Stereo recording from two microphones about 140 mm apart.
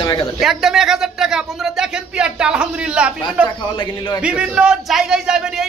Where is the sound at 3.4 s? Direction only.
35° left (ahead or behind).